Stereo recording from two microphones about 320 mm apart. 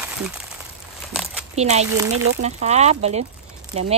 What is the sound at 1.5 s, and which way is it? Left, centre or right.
Speech, right.